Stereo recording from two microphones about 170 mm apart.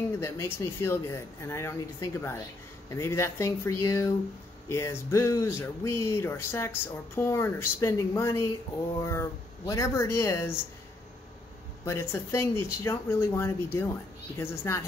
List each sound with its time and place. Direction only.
0.2 s speech: 15° left (ahead or behind)
11.8 s speech: 15° left (ahead or behind)